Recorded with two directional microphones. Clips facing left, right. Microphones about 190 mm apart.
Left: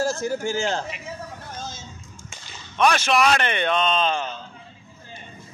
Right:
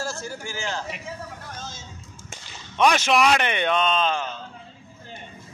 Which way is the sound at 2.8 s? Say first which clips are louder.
Even; 15° right (ahead or behind).